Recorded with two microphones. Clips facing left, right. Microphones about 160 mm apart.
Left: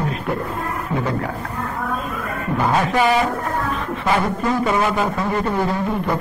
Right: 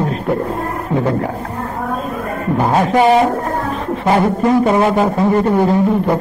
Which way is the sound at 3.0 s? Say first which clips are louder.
Right 6 dB; 35° right (ahead or behind).